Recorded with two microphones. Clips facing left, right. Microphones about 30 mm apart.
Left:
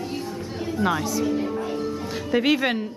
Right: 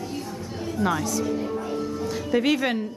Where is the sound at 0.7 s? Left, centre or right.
Centre.